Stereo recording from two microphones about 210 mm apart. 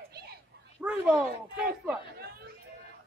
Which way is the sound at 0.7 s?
5° right (ahead or behind).